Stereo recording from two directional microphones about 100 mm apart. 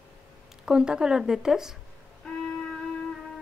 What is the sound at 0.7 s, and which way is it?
Speech, 10° right (ahead or behind).